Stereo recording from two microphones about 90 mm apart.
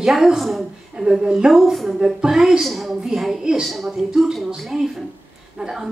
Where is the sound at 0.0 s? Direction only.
5° right (ahead or behind).